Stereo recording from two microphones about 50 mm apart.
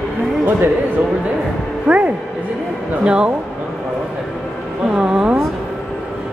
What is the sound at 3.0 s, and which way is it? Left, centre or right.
Speech, centre.